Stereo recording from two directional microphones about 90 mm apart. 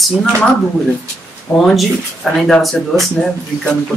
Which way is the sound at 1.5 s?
15° left (ahead or behind).